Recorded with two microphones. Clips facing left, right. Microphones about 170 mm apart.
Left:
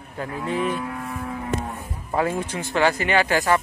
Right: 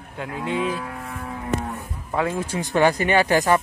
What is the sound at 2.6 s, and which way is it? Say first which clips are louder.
Speech: right 3 dB; 15° right (ahead or behind).